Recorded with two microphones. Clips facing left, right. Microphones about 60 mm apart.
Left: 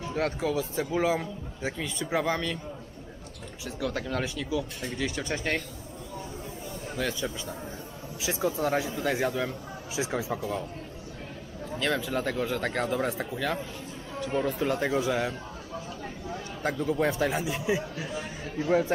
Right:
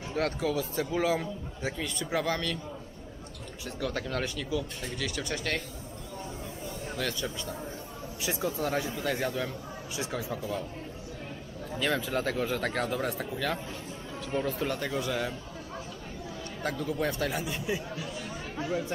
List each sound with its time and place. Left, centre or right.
0.1 s speech: centre
3.6 s speech: centre
4.9 s speech: left
7.0 s speech: centre
11.7 s speech: centre
14.9 s speech: centre
16.6 s speech: centre; by 18.9 s left